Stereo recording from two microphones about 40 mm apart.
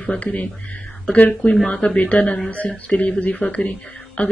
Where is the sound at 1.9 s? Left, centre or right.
Left.